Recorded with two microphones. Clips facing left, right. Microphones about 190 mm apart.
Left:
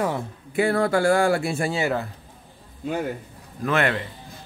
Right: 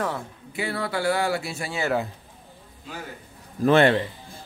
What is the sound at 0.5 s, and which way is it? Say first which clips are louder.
Speech: left 8 dB; 50° left (ahead or behind).